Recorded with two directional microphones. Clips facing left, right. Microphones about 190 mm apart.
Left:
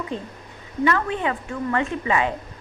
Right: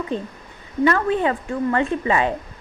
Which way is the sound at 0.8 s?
40° right (ahead or behind).